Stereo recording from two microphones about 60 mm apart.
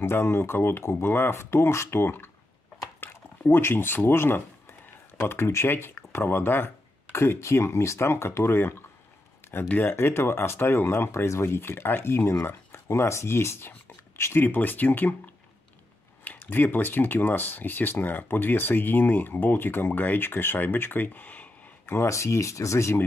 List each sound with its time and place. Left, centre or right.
0.0 s speech: left
3.0 s a sound: left
5.3 s speech: left
7.1 s speech: left
21.8 s speech: left